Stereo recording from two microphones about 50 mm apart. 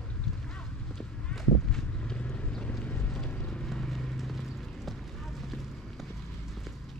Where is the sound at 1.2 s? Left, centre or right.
Centre.